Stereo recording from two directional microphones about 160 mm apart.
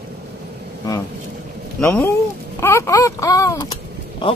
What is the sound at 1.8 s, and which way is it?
Speech, 10° left (ahead or behind).